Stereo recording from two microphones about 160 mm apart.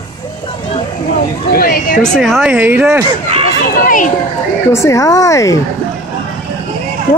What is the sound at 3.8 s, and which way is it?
Speech, 55° left (ahead or behind).